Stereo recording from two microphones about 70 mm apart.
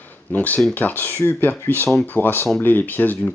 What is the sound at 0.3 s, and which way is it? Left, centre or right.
Speech, left.